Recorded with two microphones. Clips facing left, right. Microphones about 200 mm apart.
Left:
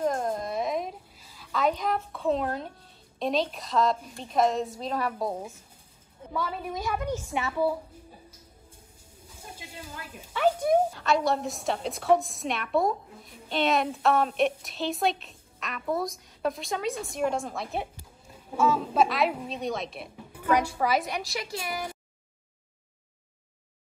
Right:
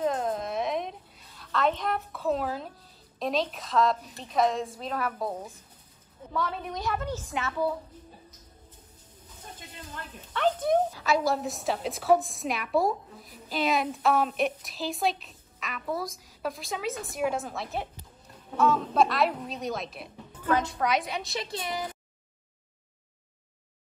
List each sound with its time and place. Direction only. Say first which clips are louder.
0.1 s a sound: even; 5° right (ahead or behind)
3.2 s a woman's voice: left 1 dB; centre (ahead or behind)
6.3 s a woman's voice: even; 5° left (ahead or behind)
7.4 s music: left 2 dB; 10° left (ahead or behind)
9.3 s a sound: left 2 dB; 10° left (ahead or behind)
10.9 s a woman's voice: left 1 dB; 5° right (ahead or behind)
20.3 s a woman's voice: left 2 dB; 10° left (ahead or behind)
21.3 s speech: even; 25° right (ahead or behind)